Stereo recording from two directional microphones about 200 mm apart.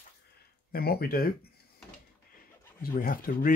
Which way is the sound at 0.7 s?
50° left (ahead or behind).